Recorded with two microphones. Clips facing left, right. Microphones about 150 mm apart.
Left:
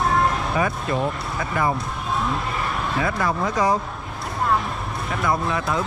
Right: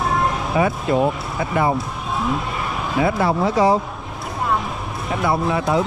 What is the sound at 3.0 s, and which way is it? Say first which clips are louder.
Speech: right 6 dB; 30° right (ahead or behind).